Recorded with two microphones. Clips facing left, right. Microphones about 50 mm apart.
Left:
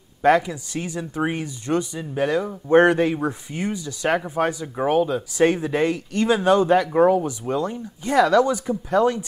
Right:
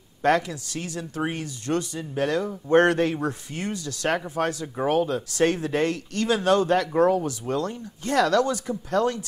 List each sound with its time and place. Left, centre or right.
0.2 s speech: centre